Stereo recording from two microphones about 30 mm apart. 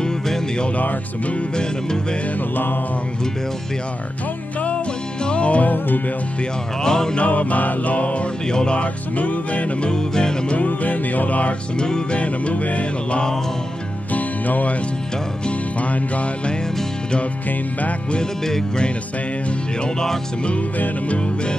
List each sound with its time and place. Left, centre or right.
5.2 s music: left
6.8 s music: left
7.2 s music: left
8.5 s music: left
9.1 s music: left
9.8 s music: left
10.6 s music: left
11.8 s music: left
12.2 s music: left
14.1 s music: left
15.8 s music: left